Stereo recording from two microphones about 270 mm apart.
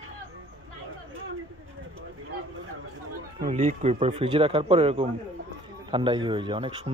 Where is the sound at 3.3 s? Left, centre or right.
Right.